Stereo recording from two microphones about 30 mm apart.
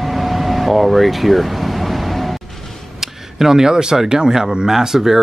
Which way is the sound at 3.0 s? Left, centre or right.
Centre.